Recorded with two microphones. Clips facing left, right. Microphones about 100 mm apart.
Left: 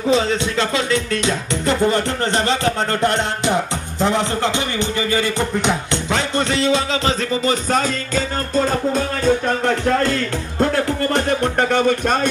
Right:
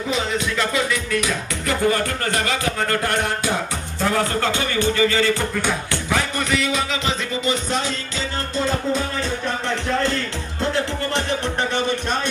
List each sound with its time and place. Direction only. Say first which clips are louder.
0.1 s speech: left 6 dB; 30° left (ahead or behind); by 10.1 s 45° left (ahead or behind)
10.6 s music: left 5 dB; 45° left (ahead or behind)